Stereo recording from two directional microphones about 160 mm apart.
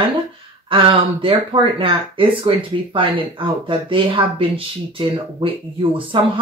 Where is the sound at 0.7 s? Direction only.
35° right (ahead or behind).